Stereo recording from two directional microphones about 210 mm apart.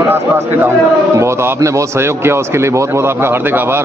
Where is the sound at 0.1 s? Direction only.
10° right (ahead or behind).